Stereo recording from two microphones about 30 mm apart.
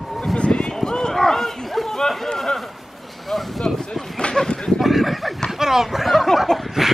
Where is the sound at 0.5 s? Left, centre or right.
Left.